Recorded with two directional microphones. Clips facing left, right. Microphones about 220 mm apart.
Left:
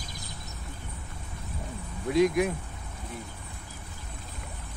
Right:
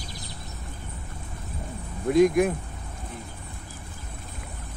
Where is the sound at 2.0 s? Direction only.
50° right (ahead or behind).